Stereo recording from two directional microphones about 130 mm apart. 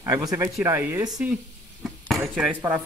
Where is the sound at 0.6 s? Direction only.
15° right (ahead or behind).